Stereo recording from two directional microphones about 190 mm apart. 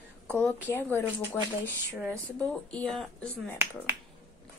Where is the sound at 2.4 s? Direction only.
5° left (ahead or behind).